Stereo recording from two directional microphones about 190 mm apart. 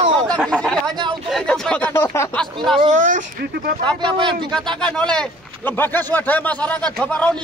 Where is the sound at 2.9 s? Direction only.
45° right (ahead or behind).